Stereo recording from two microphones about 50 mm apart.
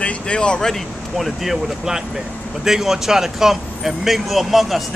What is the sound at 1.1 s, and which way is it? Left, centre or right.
Speech, centre.